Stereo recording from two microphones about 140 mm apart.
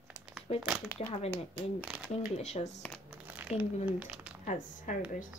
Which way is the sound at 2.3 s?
55° left (ahead or behind).